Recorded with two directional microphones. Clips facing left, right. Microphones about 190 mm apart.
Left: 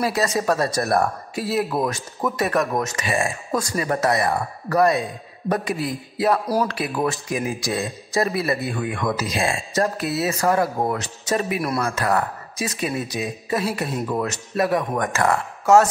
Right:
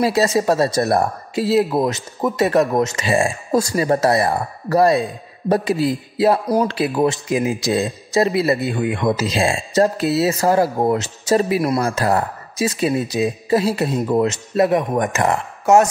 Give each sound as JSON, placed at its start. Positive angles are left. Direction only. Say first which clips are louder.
{"t": 0.0, "sound": "a man's voice", "louder": "right 5 dB", "side_deg": -30}